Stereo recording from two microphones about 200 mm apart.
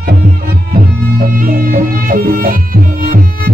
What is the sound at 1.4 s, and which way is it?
Music, 45° right (ahead or behind).